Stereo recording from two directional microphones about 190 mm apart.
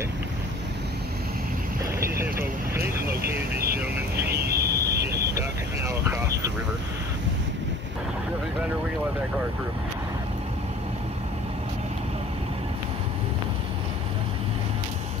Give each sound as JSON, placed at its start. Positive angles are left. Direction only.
{"t": 2.1, "sound": "vehicle", "side_deg": -15}
{"t": 3.3, "sound": "vehicle", "side_deg": -55}
{"t": 5.9, "sound": "vehicle", "side_deg": -15}